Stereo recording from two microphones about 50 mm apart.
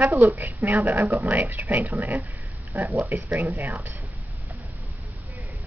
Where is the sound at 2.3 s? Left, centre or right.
Right.